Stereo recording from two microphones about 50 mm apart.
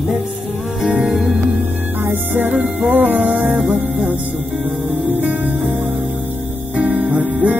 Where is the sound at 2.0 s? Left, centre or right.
Right.